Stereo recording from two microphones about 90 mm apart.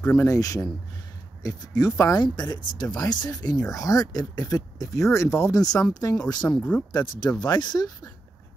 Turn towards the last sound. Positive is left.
turn(degrees=50)  # may be behind; listen again after turning